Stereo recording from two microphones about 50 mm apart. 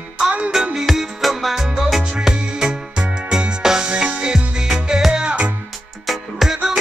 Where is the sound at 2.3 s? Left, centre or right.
Centre.